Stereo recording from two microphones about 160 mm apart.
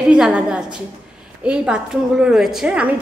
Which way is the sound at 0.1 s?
5° right (ahead or behind).